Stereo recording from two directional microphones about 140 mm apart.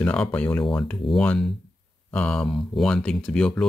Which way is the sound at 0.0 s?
10° left (ahead or behind).